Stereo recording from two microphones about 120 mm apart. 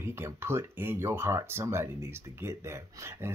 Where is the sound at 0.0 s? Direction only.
20° right (ahead or behind).